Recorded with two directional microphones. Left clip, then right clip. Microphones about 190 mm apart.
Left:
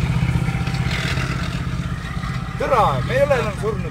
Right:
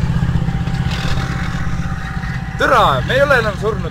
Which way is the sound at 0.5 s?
45° left (ahead or behind).